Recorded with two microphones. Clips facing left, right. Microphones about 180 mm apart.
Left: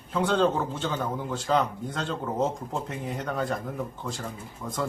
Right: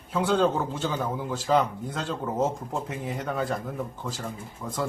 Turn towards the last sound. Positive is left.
turn(degrees=0)  # may be behind; listen again after turning